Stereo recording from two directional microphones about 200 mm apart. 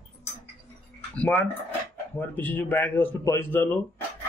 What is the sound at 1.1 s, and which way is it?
Speech, 5° left (ahead or behind).